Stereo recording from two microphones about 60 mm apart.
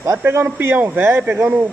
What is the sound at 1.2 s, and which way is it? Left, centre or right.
Speech, right.